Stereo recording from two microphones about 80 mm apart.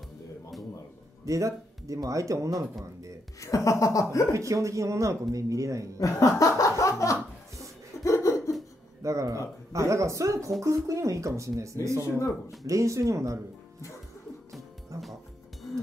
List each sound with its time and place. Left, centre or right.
1.2 s speech: right
3.3 s speech: left
4.3 s speech: right
5.9 s speech: left
8.0 s laughter: left
9.0 s speech: right
14.9 s music: right